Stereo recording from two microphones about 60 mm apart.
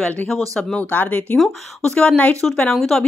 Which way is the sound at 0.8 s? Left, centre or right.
Left.